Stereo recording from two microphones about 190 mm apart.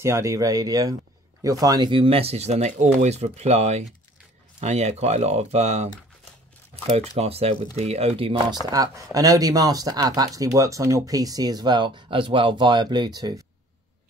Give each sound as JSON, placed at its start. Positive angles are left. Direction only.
{"t": 0.0, "sound": "speech", "side_deg": -15}